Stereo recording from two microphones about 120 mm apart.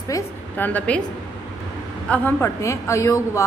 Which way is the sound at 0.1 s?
25° left (ahead or behind).